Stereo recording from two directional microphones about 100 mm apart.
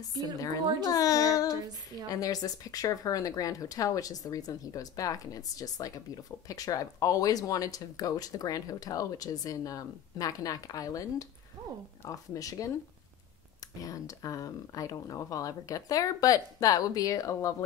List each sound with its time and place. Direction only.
0.8 s speech: 40° left (ahead or behind)
13.8 s speech: 35° left (ahead or behind)